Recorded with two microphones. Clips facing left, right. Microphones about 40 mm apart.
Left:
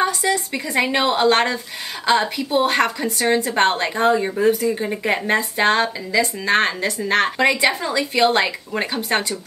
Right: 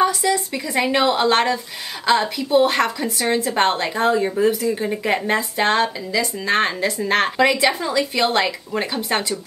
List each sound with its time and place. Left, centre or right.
0.5 s a woman's voice: centre
4.5 s speech: left
4.7 s a woman's voice: centre
6.6 s a woman's voice: centre
8.2 s speech: left
8.5 s a woman's voice: centre